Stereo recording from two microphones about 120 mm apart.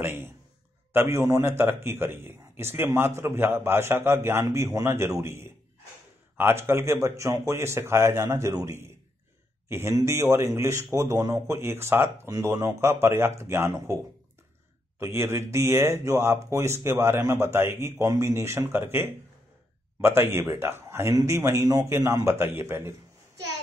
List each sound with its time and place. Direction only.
0.0 s speech: 20° right (ahead or behind)
15.0 s a man's voice: 20° right (ahead or behind)